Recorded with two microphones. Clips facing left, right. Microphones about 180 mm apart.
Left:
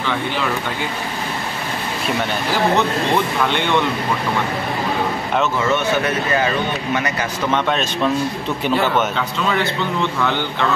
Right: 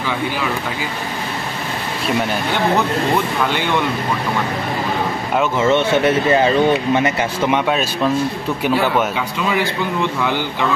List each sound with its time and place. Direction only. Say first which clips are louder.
5.6 s speech: right 4 dB; 25° right (ahead or behind)
7.5 s speech: right 2 dB; 5° right (ahead or behind)
10.2 s speech: right 1 dB; 10° right (ahead or behind)